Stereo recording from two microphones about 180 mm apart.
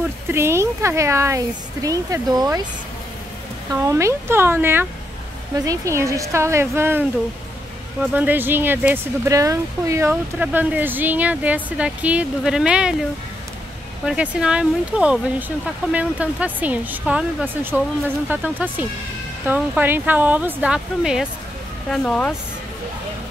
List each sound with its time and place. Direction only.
0.3 s speech: 15° right (ahead or behind)
3.7 s speech: 15° right (ahead or behind)
14.0 s speech: 5° right (ahead or behind)